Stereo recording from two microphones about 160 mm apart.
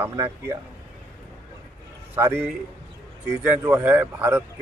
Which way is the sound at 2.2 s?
15° right (ahead or behind).